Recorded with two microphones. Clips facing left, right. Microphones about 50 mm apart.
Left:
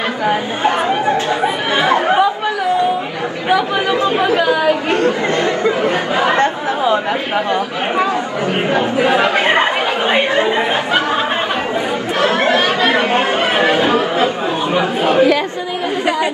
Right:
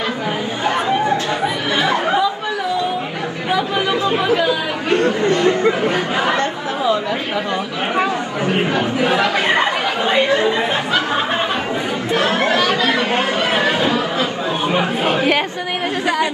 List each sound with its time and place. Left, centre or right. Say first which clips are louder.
0.3 s chatter: left 5 dB; left
3.4 s chatter: left 3 dB; left
8.5 s speech: left 1 dB; left
12.3 s chatter: left 4 dB; left
14.7 s speech: left 3 dB; right